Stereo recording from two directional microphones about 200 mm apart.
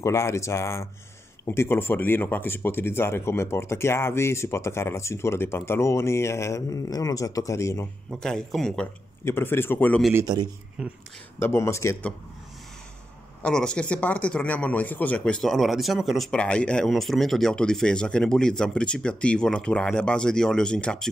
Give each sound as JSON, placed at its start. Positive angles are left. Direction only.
{"t": 0.0, "sound": "speech", "side_deg": 15}
{"t": 8.2, "sound": "speech", "side_deg": 5}
{"t": 10.1, "sound": "a man's voice", "side_deg": -20}
{"t": 10.8, "sound": "speech", "side_deg": -5}
{"t": 11.3, "sound": "speech", "side_deg": 10}
{"t": 13.4, "sound": "speech", "side_deg": 5}